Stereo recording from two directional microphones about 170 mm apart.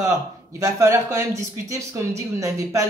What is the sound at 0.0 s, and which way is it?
Speech, 20° right (ahead or behind).